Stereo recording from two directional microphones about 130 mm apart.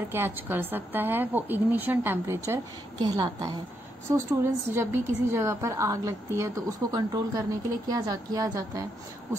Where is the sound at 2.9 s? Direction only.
30° right (ahead or behind).